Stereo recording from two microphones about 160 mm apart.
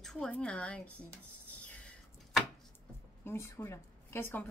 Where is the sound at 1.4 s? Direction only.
10° left (ahead or behind).